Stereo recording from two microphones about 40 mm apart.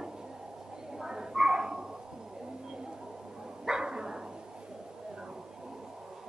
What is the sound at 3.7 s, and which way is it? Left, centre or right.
Dog, centre.